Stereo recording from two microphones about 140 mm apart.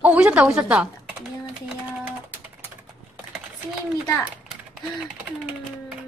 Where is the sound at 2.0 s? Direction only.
15° right (ahead or behind).